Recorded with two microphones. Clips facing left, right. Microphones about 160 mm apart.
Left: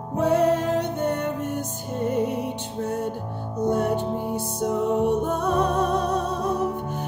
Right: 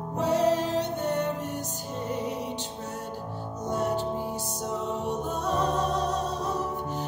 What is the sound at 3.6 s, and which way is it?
Music, 55° left (ahead or behind).